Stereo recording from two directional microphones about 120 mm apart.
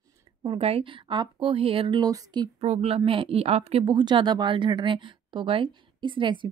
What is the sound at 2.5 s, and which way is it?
A woman's voice, 70° right (ahead or behind).